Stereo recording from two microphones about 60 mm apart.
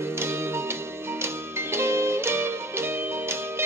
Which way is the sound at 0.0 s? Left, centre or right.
Right.